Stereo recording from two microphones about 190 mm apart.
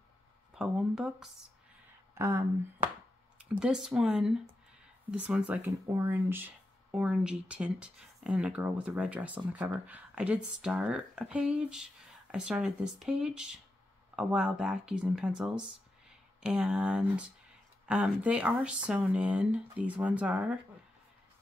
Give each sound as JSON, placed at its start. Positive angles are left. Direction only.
{"t": 0.6, "sound": "speech", "side_deg": -5}
{"t": 2.1, "sound": "speech", "side_deg": -15}
{"t": 3.5, "sound": "speech", "side_deg": -5}